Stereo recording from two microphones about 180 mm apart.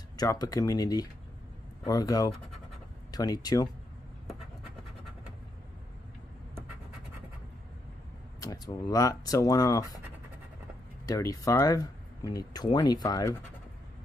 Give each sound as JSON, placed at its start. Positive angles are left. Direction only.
{"t": 0.2, "sound": "speech", "side_deg": 20}
{"t": 8.4, "sound": "speech", "side_deg": 20}
{"t": 11.1, "sound": "speech", "side_deg": 20}